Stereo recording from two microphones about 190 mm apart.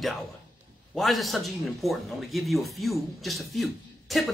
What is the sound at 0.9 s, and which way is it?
A man's voice, centre (ahead or behind).